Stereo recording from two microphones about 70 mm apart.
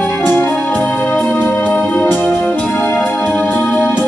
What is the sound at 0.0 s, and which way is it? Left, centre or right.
Music, left.